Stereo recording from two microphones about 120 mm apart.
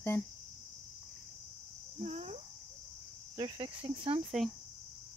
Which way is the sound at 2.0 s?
65° right (ahead or behind).